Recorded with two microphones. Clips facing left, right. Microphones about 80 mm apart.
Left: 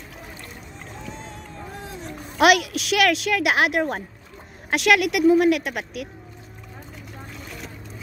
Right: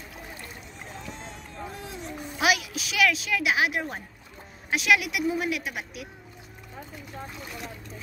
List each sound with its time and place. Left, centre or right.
2.3 s a woman's voice: left
7.3 s boat: centre